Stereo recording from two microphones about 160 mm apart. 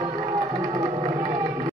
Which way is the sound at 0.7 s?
50° right (ahead or behind).